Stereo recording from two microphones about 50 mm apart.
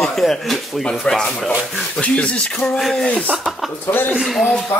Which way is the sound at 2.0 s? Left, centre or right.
Left.